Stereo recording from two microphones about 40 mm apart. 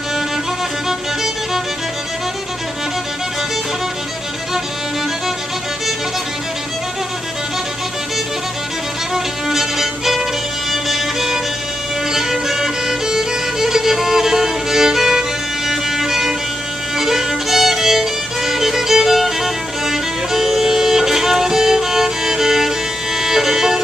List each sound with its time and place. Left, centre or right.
0.8 s music: centre
9.1 s violin: centre
10.7 s music: centre